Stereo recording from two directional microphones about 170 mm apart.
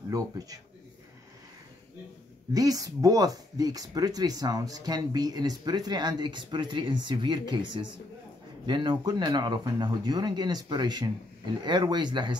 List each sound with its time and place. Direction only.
2.5 s speech: 20° right (ahead or behind)